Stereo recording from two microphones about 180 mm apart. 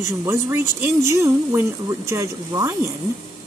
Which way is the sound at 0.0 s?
15° right (ahead or behind).